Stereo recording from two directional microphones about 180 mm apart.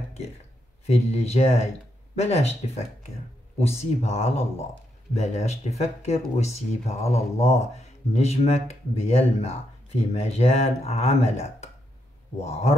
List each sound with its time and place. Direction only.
1.0 s speech: 35° left (ahead or behind)